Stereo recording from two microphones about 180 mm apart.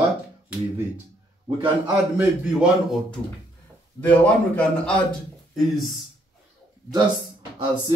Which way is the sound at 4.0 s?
10° left (ahead or behind).